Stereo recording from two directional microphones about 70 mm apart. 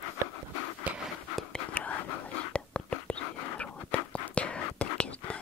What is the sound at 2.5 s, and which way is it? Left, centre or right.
Whispering, centre.